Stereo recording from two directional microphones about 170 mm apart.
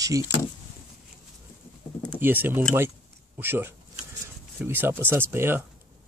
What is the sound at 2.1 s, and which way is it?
Speech, 10° right (ahead or behind).